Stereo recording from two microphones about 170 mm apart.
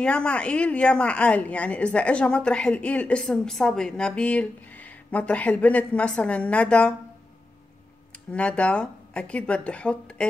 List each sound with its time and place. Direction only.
0.0 s a woman's voice: 5° left (ahead or behind)
8.1 s speech: 5° left (ahead or behind)